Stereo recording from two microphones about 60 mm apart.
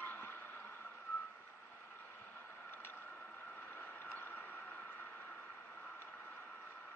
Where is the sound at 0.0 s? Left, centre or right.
Left.